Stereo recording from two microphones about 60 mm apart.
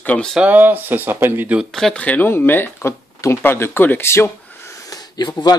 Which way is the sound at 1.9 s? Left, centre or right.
Left.